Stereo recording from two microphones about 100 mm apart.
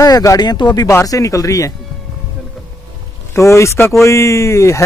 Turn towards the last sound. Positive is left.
turn(degrees=30)  # may be behind; listen again after turning